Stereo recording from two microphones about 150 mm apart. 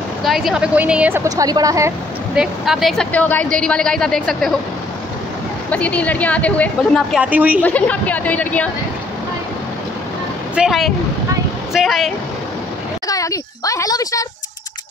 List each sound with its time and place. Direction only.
0.2 s speech: centre (ahead or behind); by 2.0 s 20° right (ahead or behind)
2.3 s speech: 5° right (ahead or behind)
5.7 s a woman's voice: 10° left (ahead or behind)
7.2 s speech: 10° right (ahead or behind)
7.6 s a woman's voice: 10° left (ahead or behind)
10.5 s speech: 5° right (ahead or behind)
13.1 s speech: 20° left (ahead or behind)